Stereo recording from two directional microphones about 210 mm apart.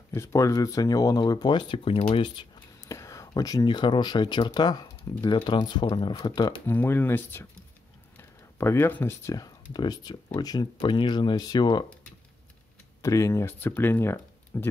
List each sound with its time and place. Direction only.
0.1 s speech: 15° left (ahead or behind)
13.0 s speech: 15° left (ahead or behind)